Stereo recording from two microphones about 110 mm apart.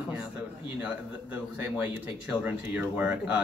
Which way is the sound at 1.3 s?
15° right (ahead or behind).